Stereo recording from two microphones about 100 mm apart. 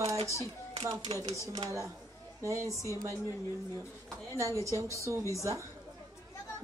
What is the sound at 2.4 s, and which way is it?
Speech, 30° right (ahead or behind).